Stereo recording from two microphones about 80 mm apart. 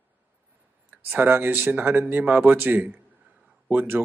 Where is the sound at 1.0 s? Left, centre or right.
Right.